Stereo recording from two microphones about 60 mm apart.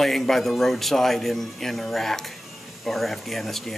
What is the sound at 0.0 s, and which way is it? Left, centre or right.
Speech, centre.